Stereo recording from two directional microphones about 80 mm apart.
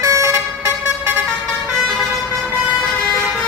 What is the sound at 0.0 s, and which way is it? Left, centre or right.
Vehicle, right.